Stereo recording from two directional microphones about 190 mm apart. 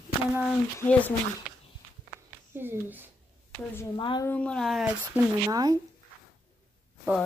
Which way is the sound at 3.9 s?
25° left (ahead or behind).